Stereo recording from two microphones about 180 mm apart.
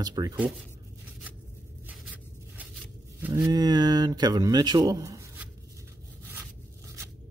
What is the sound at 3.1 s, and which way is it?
Speech, 15° right (ahead or behind).